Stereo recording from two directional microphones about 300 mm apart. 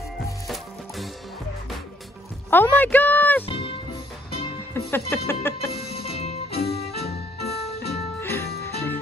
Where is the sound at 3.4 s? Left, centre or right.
Centre.